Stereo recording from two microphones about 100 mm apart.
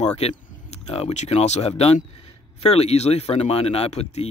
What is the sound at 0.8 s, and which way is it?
Speech, 75° left (ahead or behind).